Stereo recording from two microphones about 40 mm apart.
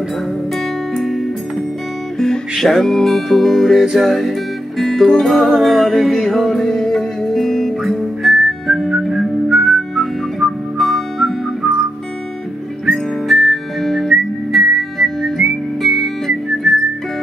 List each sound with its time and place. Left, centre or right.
0.9 s music: centre
2.1 s music: centre
8.9 s whistling: centre
10.4 s music: centre
10.8 s music: centre
12.8 s music: centre